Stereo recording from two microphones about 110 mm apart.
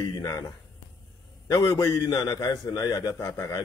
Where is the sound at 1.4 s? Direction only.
30° left (ahead or behind).